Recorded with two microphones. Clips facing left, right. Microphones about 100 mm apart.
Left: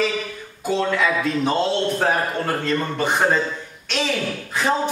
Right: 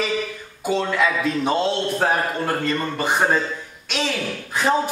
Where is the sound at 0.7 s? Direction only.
5° right (ahead or behind).